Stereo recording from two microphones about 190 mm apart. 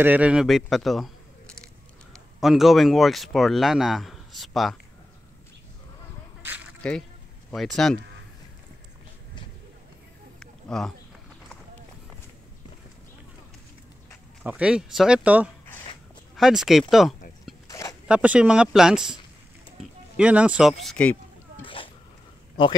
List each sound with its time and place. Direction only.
0.0 s speech: 10° right (ahead or behind)
2.4 s speech: centre (ahead or behind)
6.4 s duck: 10° right (ahead or behind)
6.8 s speech: 5° left (ahead or behind)
10.4 s a sound: 5° left (ahead or behind)
14.4 s speech: 5° right (ahead or behind)
17.6 s a sound: 20° left (ahead or behind)
18.0 s speech: 5° right (ahead or behind)
21.6 s a sound: 30° left (ahead or behind)